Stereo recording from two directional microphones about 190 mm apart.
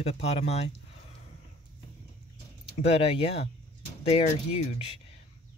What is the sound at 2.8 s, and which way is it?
Speech, 35° left (ahead or behind).